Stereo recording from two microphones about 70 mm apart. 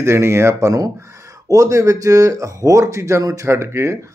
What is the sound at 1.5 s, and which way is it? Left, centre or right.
Speech, right.